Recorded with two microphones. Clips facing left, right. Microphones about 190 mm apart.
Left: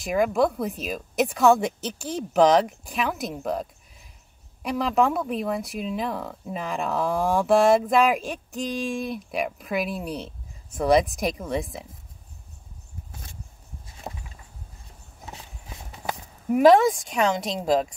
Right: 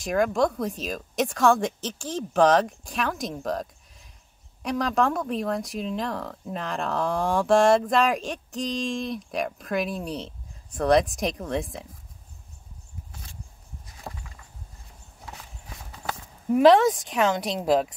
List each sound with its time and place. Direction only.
0.0 s speech: 5° left (ahead or behind)
14.0 s a sound: 20° left (ahead or behind)
15.2 s horse: 20° left (ahead or behind)
16.4 s speech: centre (ahead or behind)